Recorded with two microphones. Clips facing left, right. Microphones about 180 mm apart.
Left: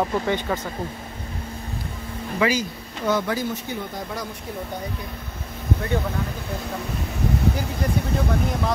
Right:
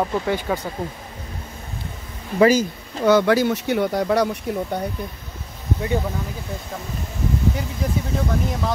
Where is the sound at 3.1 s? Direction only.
75° right (ahead or behind).